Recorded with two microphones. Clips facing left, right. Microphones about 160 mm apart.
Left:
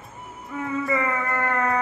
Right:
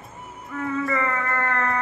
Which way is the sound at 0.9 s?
10° left (ahead or behind).